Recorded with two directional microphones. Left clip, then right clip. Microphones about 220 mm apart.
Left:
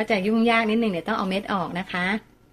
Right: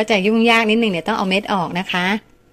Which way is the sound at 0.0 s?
25° right (ahead or behind).